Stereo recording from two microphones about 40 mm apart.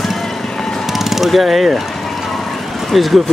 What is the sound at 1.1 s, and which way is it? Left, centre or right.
Speech, centre.